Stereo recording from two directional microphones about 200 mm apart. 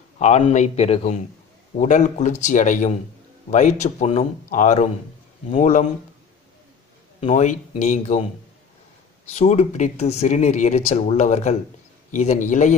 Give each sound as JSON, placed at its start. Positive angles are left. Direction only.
{"t": 0.2, "sound": "speech", "side_deg": 35}
{"t": 7.2, "sound": "speech", "side_deg": 35}
{"t": 9.3, "sound": "speech", "side_deg": 35}